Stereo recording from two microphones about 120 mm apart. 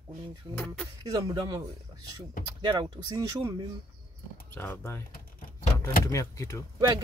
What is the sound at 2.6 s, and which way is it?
Speech, 40° right (ahead or behind).